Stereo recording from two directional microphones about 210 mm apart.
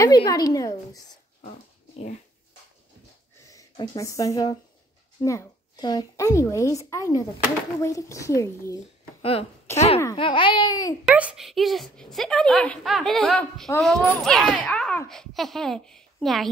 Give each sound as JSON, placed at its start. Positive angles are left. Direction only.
{"t": 0.0, "sound": "a child's voice", "side_deg": 15}
{"t": 3.4, "sound": "a child's voice", "side_deg": 20}
{"t": 9.2, "sound": "speech", "side_deg": 25}
{"t": 9.7, "sound": "a child's voice", "side_deg": 10}
{"t": 10.1, "sound": "speech", "side_deg": 25}
{"t": 11.1, "sound": "a child's voice", "side_deg": -5}